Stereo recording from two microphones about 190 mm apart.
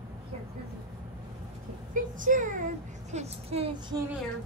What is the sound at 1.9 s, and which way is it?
Speech, 45° right (ahead or behind).